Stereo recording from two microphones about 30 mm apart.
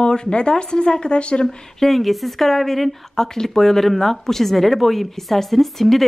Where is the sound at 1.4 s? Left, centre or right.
Centre.